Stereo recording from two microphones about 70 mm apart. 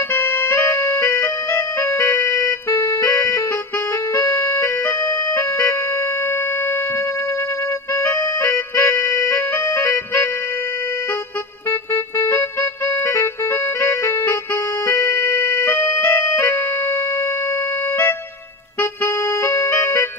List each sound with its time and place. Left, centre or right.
0.1 s music: left
0.5 s music: left
1.0 s keyboard: left
4.1 s music: left
7.9 s music: left
11.9 s music: left
18.8 s music: left